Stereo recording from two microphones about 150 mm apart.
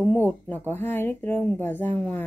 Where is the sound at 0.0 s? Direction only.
10° left (ahead or behind).